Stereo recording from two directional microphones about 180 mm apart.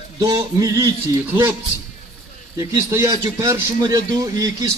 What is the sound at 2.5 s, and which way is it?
A man's voice, 15° right (ahead or behind).